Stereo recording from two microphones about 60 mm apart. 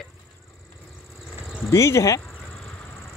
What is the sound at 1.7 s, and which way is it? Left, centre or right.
Speech, left.